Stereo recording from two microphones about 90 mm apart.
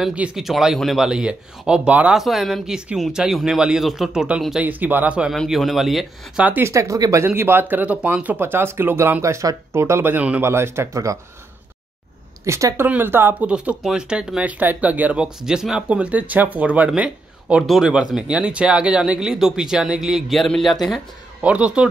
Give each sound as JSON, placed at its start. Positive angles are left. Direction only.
{"t": 0.0, "sound": "speech", "side_deg": -10}
{"t": 2.2, "sound": "a man's voice", "side_deg": 0}
{"t": 4.6, "sound": "speech", "side_deg": -20}
{"t": 5.3, "sound": "a man's voice", "side_deg": 5}
{"t": 6.4, "sound": "speech", "side_deg": -20}
{"t": 6.7, "sound": "speech", "side_deg": -35}
{"t": 7.2, "sound": "speech", "side_deg": -25}
{"t": 10.1, "sound": "speech", "side_deg": -15}
{"t": 10.4, "sound": "speech", "side_deg": -30}
{"t": 12.4, "sound": "speech", "side_deg": -35}
{"t": 12.8, "sound": "speech", "side_deg": -25}
{"t": 21.4, "sound": "speech", "side_deg": -15}